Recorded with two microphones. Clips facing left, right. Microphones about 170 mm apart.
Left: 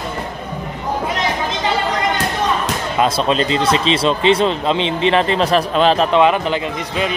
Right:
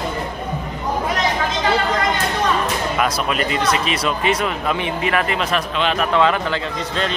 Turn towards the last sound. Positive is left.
turn(degrees=15)  # may be behind; listen again after turning